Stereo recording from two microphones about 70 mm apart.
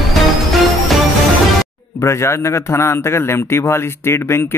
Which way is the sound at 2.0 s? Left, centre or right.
Left.